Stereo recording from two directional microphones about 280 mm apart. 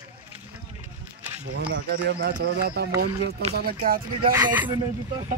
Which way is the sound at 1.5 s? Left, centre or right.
Right.